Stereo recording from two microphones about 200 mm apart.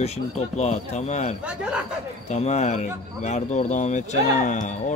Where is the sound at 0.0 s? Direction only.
35° left (ahead or behind).